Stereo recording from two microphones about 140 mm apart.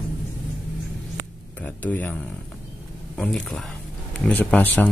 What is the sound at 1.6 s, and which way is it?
Speech, 10° left (ahead or behind).